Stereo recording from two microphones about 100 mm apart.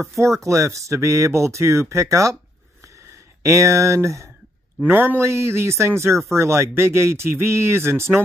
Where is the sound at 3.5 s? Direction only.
30° right (ahead or behind).